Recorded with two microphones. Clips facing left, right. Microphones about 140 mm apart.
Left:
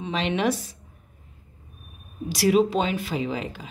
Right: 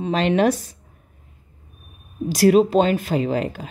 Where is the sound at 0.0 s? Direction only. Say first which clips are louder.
Right 6 dB; 45° right (ahead or behind).